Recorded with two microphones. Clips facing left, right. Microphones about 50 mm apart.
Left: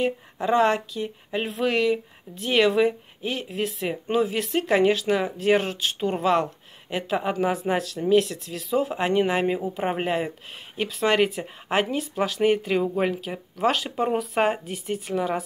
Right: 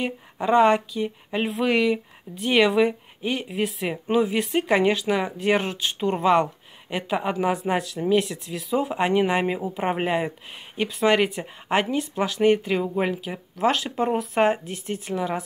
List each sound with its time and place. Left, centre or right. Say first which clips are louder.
0.0 s speech: left 1 dB; centre